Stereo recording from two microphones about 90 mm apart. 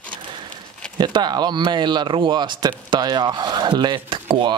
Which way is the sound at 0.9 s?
55° right (ahead or behind).